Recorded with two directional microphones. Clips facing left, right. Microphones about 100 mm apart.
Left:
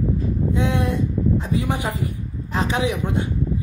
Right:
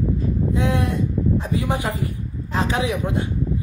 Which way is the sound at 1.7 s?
25° right (ahead or behind).